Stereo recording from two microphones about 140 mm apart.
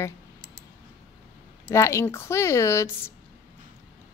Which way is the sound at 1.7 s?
20° left (ahead or behind).